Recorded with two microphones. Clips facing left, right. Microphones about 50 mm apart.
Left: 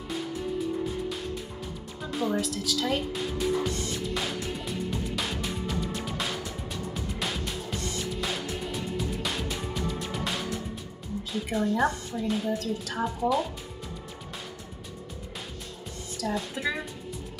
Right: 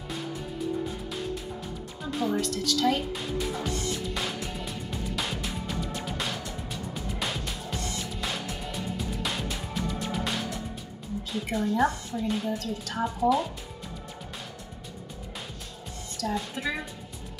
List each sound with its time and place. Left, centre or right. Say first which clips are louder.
2.0 s music: even; centre
11.5 s a woman's voice: even; centre
16.2 s a woman's voice: even; centre